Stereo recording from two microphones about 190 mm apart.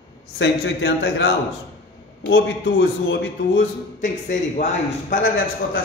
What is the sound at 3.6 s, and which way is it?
A man's voice, 40° left (ahead or behind).